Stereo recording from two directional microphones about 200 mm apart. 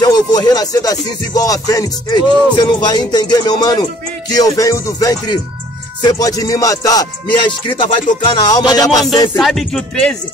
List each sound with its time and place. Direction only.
0.0 s music: 20° left (ahead or behind)
9.4 s speech: centre (ahead or behind)